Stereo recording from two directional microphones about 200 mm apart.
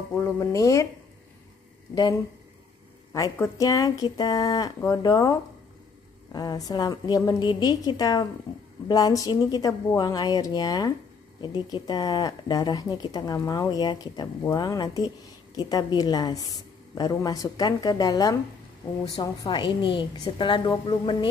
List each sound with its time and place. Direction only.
0.1 s speech: 15° left (ahead or behind)
3.1 s speech: 15° left (ahead or behind)
19.4 s speech: 25° left (ahead or behind)